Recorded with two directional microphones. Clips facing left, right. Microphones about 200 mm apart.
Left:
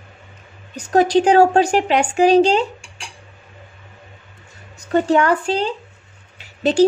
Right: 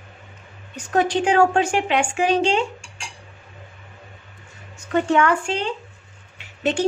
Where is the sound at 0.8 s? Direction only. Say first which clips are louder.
Left 6 dB; 40° left (ahead or behind).